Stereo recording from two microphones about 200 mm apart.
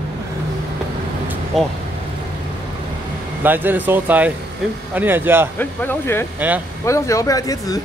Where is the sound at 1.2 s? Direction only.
10° right (ahead or behind).